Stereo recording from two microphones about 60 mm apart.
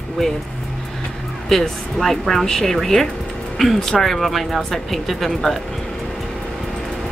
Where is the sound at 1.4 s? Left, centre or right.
Centre.